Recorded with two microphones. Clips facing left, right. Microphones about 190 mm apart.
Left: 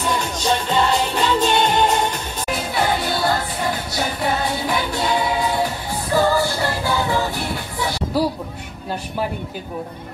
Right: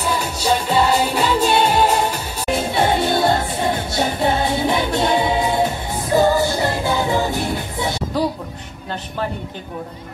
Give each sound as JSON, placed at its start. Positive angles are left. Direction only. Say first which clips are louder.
{"t": 0.1, "sound": "music", "louder": "right 2 dB", "side_deg": -10}
{"t": 2.5, "sound": "music", "louder": "right 4 dB", "side_deg": -25}
{"t": 8.2, "sound": "music", "louder": "left 1 dB", "side_deg": 10}